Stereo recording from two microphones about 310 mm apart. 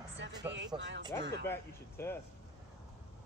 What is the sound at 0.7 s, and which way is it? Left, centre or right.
Speech, centre.